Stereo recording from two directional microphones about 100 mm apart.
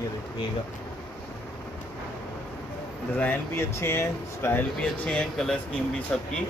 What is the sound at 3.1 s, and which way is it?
Speech, 20° left (ahead or behind).